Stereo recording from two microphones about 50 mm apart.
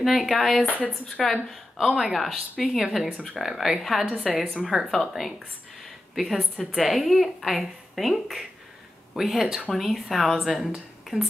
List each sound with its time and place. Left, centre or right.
0.0 s a woman's voice: centre
11.1 s speech: centre